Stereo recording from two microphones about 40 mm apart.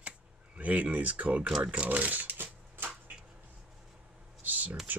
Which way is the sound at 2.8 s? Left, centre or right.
Right.